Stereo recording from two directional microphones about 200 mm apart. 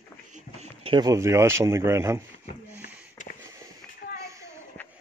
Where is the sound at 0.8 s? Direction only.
20° right (ahead or behind).